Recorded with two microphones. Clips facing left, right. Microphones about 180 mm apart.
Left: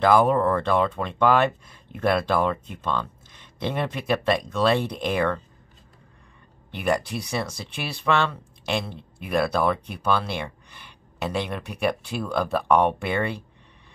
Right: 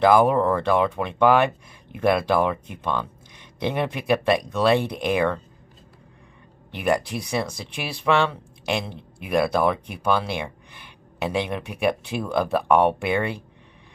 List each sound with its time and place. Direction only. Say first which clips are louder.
0.0 s speech: right 2 dB; 15° right (ahead or behind)
6.7 s speech: right 2 dB; 15° right (ahead or behind)